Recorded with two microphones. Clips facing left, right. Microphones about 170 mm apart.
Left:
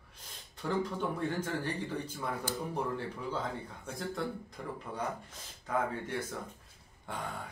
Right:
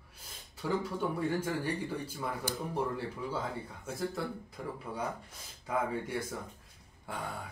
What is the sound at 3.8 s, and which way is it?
Speech, 5° right (ahead or behind).